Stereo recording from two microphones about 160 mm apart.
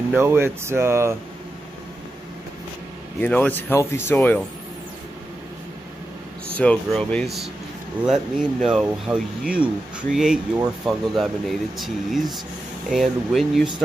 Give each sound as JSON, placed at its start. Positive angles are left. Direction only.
{"t": 0.1, "sound": "speech", "side_deg": -15}
{"t": 3.2, "sound": "speech", "side_deg": 10}
{"t": 6.6, "sound": "speech", "side_deg": 5}